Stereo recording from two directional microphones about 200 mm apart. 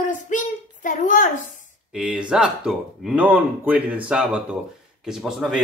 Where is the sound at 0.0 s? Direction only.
40° left (ahead or behind).